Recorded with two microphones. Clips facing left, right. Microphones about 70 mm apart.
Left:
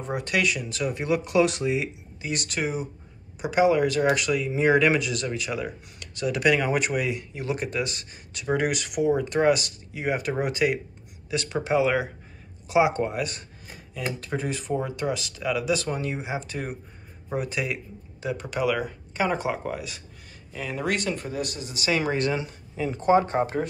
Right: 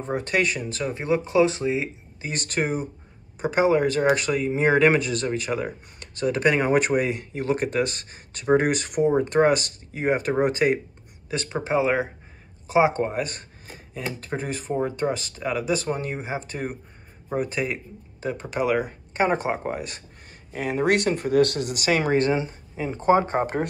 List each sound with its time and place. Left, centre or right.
0.0 s speech: right
21.3 s speech: right
21.7 s speech: right